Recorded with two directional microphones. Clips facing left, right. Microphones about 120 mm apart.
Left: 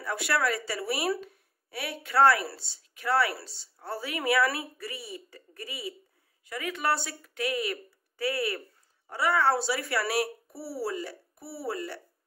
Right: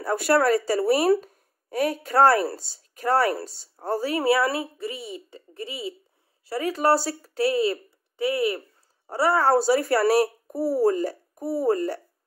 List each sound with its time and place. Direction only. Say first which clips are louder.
0.0 s speech: right 8 dB; 45° right (ahead or behind)
1.2 s speech: left 5 dB; 40° right (ahead or behind); by 8.6 s 20° right (ahead or behind)
9.0 s speech: right 4 dB; 35° right (ahead or behind)